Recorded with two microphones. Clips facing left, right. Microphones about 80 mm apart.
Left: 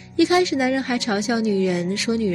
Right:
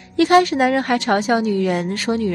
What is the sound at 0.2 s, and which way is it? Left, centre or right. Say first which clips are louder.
A woman's voice: right 4 dB; right.